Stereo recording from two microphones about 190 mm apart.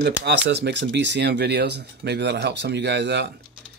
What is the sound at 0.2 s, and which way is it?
Speech, 65° right (ahead or behind).